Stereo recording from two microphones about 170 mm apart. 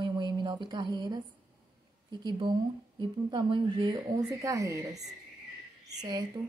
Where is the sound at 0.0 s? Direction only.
25° right (ahead or behind).